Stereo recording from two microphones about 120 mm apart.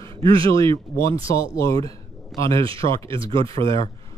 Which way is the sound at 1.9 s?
25° left (ahead or behind).